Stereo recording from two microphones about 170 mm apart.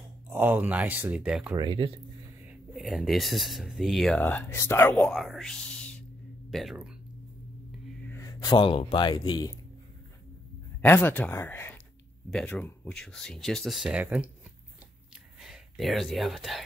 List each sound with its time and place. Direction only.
0.3 s speech: 10° right (ahead or behind)
1.5 s speech: 25° right (ahead or behind)
2.4 s speech: centre (ahead or behind)
8.1 s speech: 20° left (ahead or behind)
10.8 s speech: 10° left (ahead or behind); by 14.3 s 5° right (ahead or behind)
15.4 s speech: centre (ahead or behind)